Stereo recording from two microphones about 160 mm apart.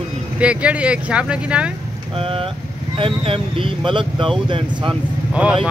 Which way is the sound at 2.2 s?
35° right (ahead or behind).